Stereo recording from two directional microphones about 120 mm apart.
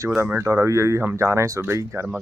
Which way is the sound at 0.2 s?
20° right (ahead or behind).